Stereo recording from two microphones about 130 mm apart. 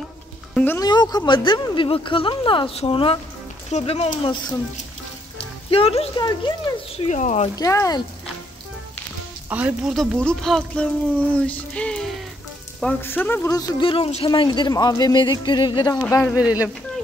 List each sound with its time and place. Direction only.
0.7 s a man's voice: 30° left (ahead or behind); by 4.1 s 50° left (ahead or behind)
4.2 s a man's voice: 40° left (ahead or behind)
5.7 s speech: 45° left (ahead or behind)
6.1 s a man's voice: 35° left (ahead or behind)
7.1 s speech: 65° left (ahead or behind)
7.5 s speech: 25° left (ahead or behind)
9.5 s speech: 10° right (ahead or behind)
9.9 s speech: 5° left (ahead or behind)
12.8 s speech: 15° left (ahead or behind)
13.5 s a man's voice: 30° left (ahead or behind)
16.3 s speech: 10° right (ahead or behind)